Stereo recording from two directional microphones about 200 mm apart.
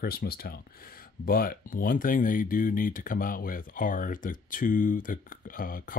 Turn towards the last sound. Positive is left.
turn(degrees=45)  # may be behind; listen again after turning